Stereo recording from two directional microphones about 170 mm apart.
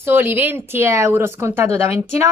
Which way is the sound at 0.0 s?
10° right (ahead or behind).